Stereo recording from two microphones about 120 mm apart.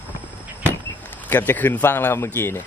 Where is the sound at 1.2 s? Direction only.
15° left (ahead or behind).